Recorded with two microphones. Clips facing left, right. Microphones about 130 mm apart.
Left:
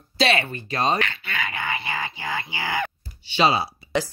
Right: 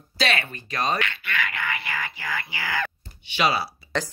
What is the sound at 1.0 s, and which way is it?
Speech, 30° left (ahead or behind).